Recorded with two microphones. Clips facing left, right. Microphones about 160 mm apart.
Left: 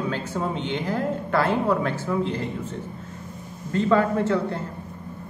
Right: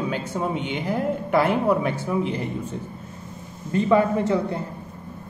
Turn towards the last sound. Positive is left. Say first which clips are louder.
# right 1 dB
turn(degrees=-15)  # may be behind; listen again after turning